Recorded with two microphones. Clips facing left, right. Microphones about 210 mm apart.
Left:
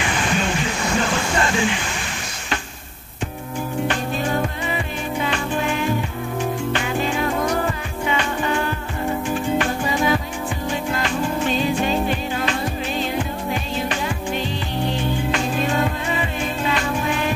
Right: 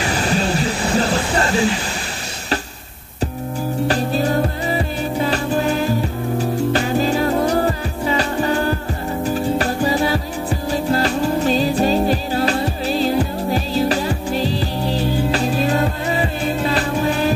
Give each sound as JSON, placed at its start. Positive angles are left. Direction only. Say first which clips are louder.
{"t": 0.0, "sound": "music", "louder": "right 3 dB", "side_deg": -35}
{"t": 3.8, "sound": "music", "louder": "right 6 dB", "side_deg": -35}